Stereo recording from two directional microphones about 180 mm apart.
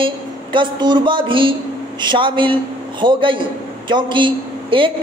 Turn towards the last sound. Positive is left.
turn(degrees=-25)  # may be behind; listen again after turning